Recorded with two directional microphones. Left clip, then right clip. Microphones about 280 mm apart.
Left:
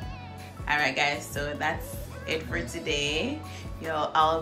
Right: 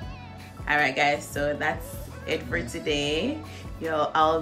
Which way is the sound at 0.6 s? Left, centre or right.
Centre.